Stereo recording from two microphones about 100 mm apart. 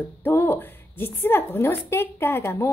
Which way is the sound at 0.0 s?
20° left (ahead or behind).